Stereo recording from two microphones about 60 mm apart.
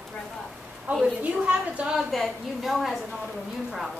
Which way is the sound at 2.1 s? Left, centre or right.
Centre.